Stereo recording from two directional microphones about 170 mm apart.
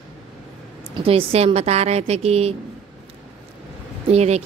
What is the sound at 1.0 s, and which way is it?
A woman's voice, 35° right (ahead or behind).